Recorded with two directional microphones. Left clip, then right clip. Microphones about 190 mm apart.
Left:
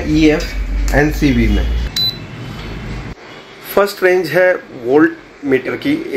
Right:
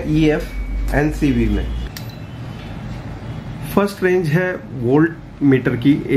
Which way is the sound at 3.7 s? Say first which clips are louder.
Left 5 dB; 35° left (ahead or behind).